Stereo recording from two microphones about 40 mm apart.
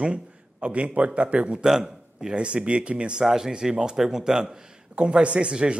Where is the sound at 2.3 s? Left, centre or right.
Right.